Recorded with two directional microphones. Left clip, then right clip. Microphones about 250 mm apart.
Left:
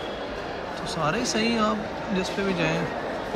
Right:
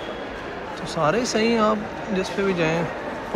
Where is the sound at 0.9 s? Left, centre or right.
Centre.